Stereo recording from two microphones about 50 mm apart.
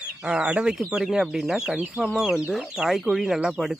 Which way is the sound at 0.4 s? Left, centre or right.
Right.